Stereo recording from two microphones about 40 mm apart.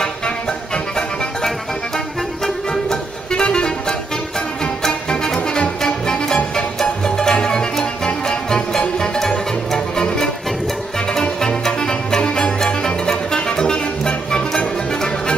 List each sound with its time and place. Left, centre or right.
2.4 s music: centre
3.3 s music: left
4.8 s music: centre